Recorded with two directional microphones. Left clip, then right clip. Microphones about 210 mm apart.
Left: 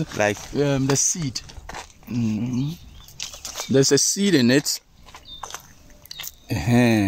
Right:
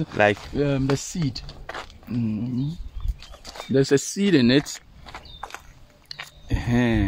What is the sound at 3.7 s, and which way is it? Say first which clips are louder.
Speech: left 2 dB; 45° left (ahead or behind).